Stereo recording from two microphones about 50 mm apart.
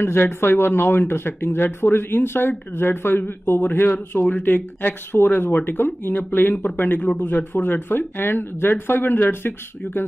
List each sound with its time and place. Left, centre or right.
0.0 s speech: left